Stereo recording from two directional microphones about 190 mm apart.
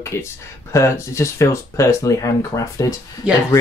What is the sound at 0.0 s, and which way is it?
Speech, 15° left (ahead or behind).